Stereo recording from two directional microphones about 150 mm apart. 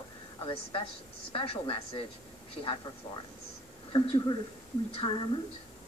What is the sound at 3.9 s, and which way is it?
A woman's voice, 35° left (ahead or behind).